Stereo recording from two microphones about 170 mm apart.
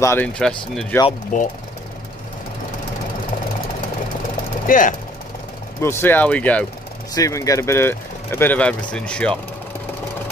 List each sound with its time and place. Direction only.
0.0 s speech: 10° left (ahead or behind)
1.3 s speech: 50° left (ahead or behind)
4.6 s speech: 50° left (ahead or behind)
5.8 s speech: 15° left (ahead or behind)
7.2 s speech: 20° left (ahead or behind)